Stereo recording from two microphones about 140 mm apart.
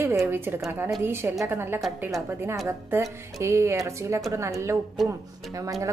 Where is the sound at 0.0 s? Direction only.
20° right (ahead or behind).